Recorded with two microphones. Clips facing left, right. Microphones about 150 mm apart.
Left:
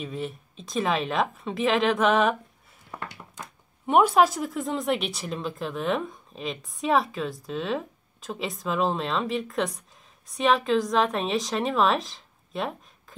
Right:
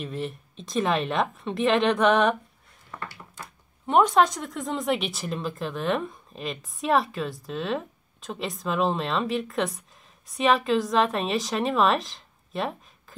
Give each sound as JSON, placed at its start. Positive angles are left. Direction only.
{"t": 0.0, "sound": "speech", "side_deg": 0}
{"t": 2.9, "sound": "a sound", "side_deg": 20}
{"t": 3.8, "sound": "speech", "side_deg": 10}